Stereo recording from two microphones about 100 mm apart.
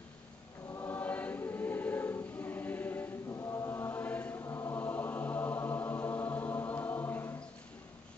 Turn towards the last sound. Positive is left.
turn(degrees=20)  # may be behind; listen again after turning